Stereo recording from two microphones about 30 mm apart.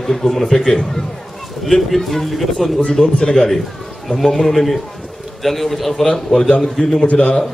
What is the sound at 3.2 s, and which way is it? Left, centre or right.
Speech, left.